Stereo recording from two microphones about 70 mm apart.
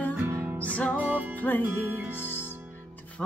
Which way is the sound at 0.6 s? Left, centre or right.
Centre.